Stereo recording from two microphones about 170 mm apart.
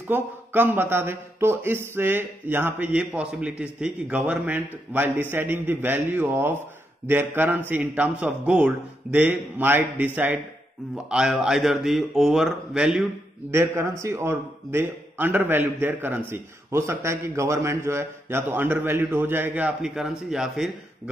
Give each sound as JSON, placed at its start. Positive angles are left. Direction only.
{"t": 0.1, "sound": "a man's voice", "side_deg": -10}
{"t": 13.5, "sound": "a man's voice", "side_deg": -15}